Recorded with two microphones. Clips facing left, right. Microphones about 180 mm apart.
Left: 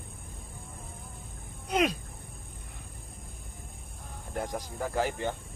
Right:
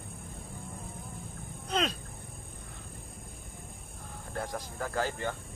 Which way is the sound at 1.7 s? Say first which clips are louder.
Left 4 dB; 15° left (ahead or behind).